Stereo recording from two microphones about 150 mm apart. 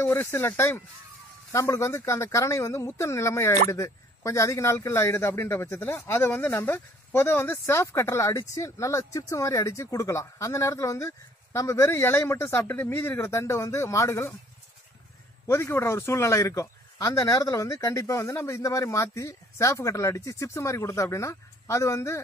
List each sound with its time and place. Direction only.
0.0 s a man's voice: 15° left (ahead or behind)
15.4 s a man's voice: 15° left (ahead or behind)